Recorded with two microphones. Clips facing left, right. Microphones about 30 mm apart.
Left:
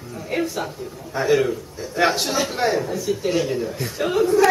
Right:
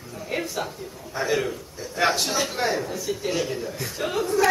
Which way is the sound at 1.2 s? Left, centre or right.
Centre.